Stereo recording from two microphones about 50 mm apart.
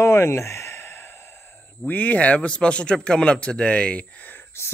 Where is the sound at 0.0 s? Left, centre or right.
Left.